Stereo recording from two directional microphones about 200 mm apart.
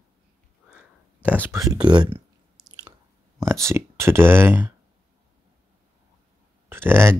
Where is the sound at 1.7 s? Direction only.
20° right (ahead or behind).